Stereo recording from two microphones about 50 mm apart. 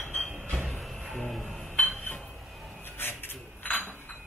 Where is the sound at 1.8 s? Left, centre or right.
Left.